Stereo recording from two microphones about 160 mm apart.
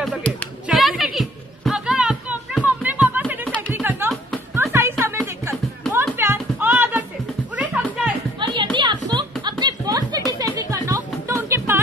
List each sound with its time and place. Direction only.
0.7 s a sound: centre (ahead or behind)
3.4 s music: 10° left (ahead or behind)
3.7 s music: 15° right (ahead or behind)
8.7 s music: 30° right (ahead or behind)